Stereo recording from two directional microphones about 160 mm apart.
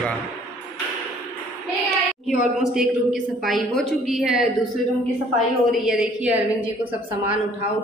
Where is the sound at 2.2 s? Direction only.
5° right (ahead or behind).